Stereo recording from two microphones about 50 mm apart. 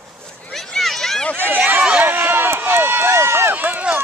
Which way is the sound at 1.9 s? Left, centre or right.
Right.